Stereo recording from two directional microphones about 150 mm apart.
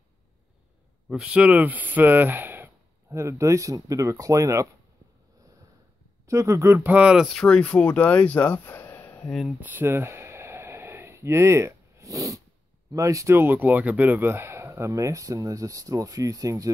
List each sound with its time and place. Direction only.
1.0 s speech: 5° right (ahead or behind)
6.2 s speech: 20° right (ahead or behind); by 9.3 s 15° left (ahead or behind)
9.6 s a sound: 15° right (ahead or behind)
12.9 s speech: 20° right (ahead or behind)